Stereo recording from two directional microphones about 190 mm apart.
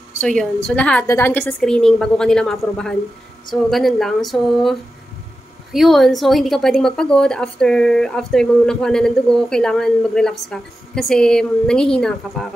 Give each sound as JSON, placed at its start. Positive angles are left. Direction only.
{"t": 0.3, "sound": "a woman's voice", "side_deg": 5}